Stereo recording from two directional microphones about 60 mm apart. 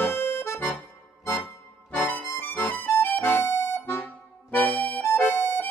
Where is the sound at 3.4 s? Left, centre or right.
Left.